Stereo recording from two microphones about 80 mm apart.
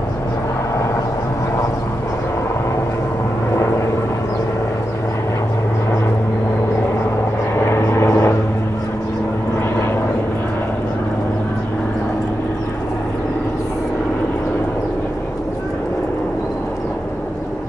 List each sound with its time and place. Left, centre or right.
7.5 s vehicle: left